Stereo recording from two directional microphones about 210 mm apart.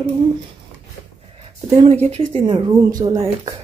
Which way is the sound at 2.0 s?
25° right (ahead or behind).